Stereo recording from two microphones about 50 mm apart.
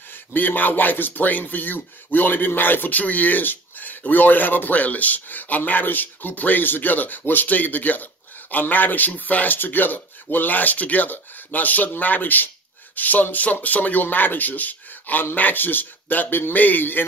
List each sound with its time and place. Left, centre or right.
0.3 s a man's voice: left